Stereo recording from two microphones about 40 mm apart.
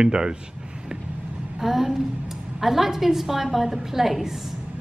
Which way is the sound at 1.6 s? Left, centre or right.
Centre.